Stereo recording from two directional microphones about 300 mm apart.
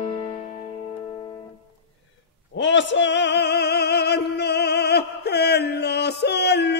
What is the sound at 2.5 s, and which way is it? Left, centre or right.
Music, left.